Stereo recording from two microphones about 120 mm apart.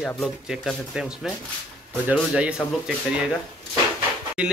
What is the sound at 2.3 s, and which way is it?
Speech, 10° right (ahead or behind).